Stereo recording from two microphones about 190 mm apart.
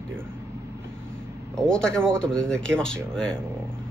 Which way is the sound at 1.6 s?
5° left (ahead or behind).